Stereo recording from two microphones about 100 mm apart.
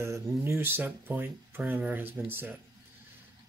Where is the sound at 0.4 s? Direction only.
20° right (ahead or behind).